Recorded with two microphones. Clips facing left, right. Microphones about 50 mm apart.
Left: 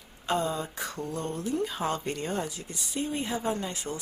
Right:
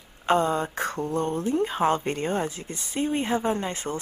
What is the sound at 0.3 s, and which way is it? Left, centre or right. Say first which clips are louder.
Speech: right 6 dB; right.